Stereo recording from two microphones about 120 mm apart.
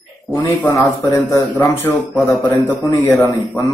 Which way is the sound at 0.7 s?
25° left (ahead or behind).